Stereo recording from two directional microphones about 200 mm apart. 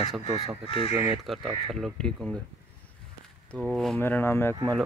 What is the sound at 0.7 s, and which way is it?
Speech, 30° left (ahead or behind).